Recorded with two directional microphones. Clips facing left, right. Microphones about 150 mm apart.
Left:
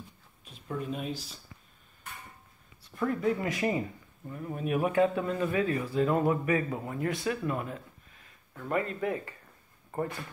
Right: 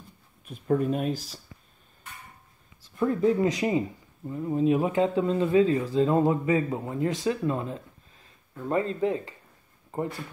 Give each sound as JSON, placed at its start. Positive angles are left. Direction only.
{"t": 0.5, "sound": "speech", "side_deg": -55}
{"t": 3.0, "sound": "speech", "side_deg": -20}